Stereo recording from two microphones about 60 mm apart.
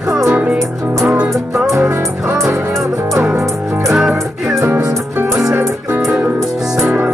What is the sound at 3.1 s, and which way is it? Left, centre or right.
Music, right.